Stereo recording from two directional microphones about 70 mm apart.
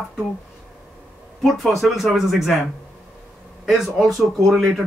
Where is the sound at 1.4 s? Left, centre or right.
Centre.